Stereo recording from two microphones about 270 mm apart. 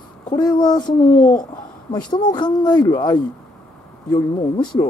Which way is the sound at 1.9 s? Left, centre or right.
Centre.